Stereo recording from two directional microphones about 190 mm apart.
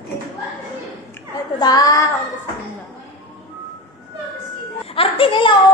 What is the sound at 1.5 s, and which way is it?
Speech, 20° left (ahead or behind).